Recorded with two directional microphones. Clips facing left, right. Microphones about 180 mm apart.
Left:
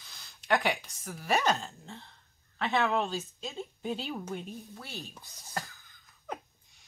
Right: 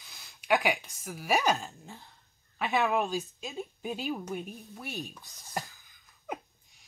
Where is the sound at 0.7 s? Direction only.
15° right (ahead or behind).